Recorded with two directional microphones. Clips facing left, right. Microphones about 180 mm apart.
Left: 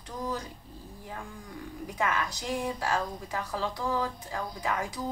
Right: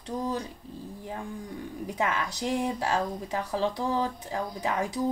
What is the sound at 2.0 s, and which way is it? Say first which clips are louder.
Speech: right 1 dB; 25° right (ahead or behind).